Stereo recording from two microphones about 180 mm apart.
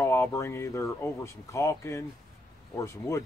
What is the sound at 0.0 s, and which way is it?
Speech, 15° left (ahead or behind).